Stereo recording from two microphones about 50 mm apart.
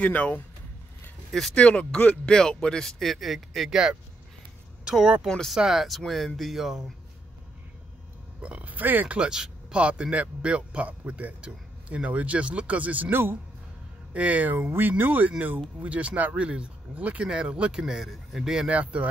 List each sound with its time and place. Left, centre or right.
0.0 s speech: left
1.5 s speech: left
2.3 s speech: centre
4.8 s speech: centre
5.9 s speech: centre
8.4 s speech: right
9.0 s speech: right
13.1 s speech: right
14.1 s speech: right
17.2 s speech: centre
17.8 s speech: centre
18.7 s speech: right